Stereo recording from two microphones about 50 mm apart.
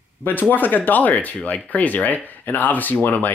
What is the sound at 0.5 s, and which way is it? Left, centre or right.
Speech, left.